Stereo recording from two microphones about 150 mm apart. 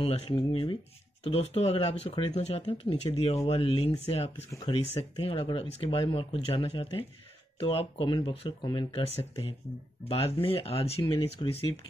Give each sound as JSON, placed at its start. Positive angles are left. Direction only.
{"t": 0.0, "sound": "speech", "side_deg": 40}
{"t": 4.5, "sound": "speech", "side_deg": 30}